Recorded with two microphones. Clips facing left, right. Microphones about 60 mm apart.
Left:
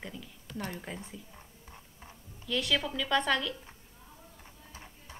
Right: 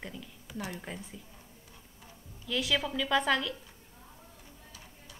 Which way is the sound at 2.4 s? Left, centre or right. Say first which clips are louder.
Even; centre.